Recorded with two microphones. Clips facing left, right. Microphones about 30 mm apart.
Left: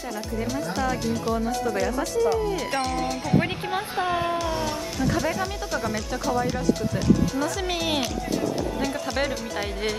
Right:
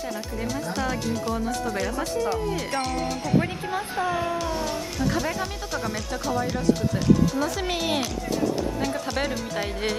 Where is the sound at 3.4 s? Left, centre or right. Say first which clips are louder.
Left 1 dB; left.